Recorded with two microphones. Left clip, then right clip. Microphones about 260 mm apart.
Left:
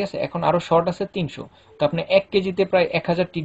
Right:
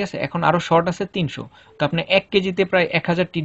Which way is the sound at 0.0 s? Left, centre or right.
Right.